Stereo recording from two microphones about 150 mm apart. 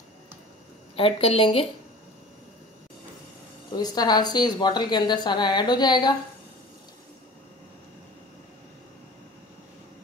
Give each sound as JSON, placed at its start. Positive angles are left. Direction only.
{"t": 0.9, "sound": "a woman's voice", "side_deg": 40}
{"t": 3.7, "sound": "a woman's voice", "side_deg": 25}